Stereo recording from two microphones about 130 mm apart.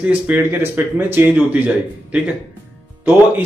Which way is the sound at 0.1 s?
15° right (ahead or behind).